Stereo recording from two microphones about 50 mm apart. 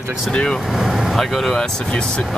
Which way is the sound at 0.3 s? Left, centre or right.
Centre.